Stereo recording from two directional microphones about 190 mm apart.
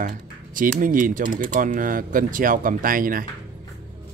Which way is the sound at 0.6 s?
45° right (ahead or behind).